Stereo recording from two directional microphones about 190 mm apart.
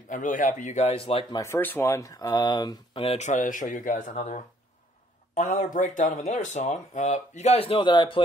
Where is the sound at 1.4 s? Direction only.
10° left (ahead or behind).